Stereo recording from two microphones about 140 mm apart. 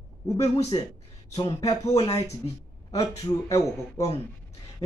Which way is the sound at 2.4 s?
25° left (ahead or behind).